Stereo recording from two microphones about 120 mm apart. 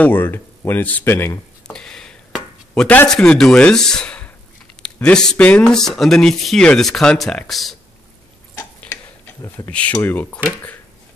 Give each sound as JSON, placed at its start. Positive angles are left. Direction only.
{"t": 0.0, "sound": "speech", "side_deg": 15}
{"t": 1.7, "sound": "chopping", "side_deg": 5}
{"t": 3.1, "sound": "speech", "side_deg": 5}
{"t": 9.7, "sound": "speech", "side_deg": 10}